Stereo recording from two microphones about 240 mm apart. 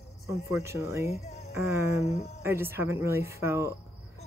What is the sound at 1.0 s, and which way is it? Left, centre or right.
Music, left.